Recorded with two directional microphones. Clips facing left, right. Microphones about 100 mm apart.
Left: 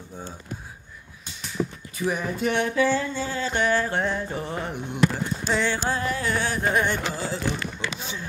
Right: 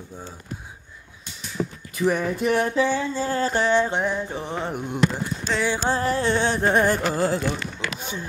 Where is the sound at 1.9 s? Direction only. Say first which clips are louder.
Right 5 dB; 60° right (ahead or behind).